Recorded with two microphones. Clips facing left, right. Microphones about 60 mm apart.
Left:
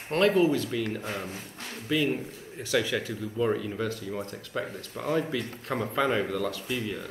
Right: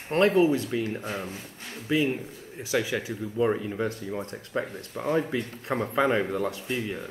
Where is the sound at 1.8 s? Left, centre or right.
Right.